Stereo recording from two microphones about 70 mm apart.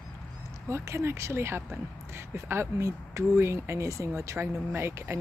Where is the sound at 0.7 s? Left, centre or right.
Right.